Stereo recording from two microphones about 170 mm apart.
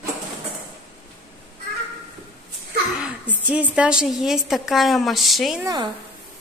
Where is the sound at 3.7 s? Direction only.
5° right (ahead or behind).